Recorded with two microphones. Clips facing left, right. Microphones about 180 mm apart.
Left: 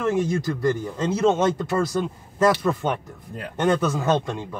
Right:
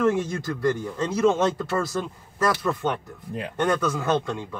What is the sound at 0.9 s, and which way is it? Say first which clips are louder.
Speech: even; 20° left (ahead or behind).